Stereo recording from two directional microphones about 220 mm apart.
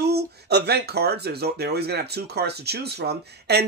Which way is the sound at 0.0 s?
50° right (ahead or behind).